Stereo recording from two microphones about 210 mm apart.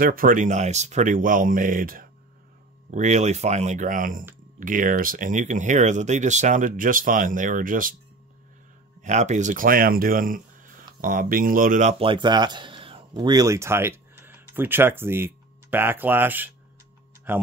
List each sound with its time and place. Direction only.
0.0 s speech: 40° right (ahead or behind)
9.0 s speech: 35° right (ahead or behind)
12.0 s speech: 25° right (ahead or behind)